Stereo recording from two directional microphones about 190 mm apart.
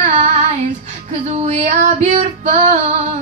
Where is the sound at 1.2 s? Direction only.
35° right (ahead or behind).